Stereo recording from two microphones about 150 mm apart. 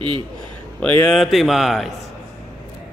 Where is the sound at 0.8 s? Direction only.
10° left (ahead or behind).